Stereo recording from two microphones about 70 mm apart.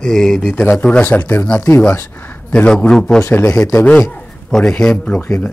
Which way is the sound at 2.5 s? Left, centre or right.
Centre.